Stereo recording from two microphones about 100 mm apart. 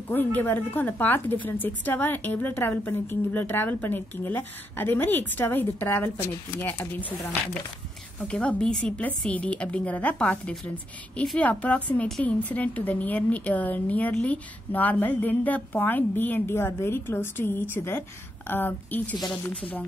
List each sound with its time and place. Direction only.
0.1 s a woman's voice: 20° left (ahead or behind)
8.3 s a woman's voice: 10° left (ahead or behind)